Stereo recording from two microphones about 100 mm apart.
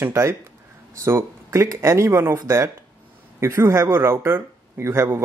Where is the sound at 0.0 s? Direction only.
25° right (ahead or behind).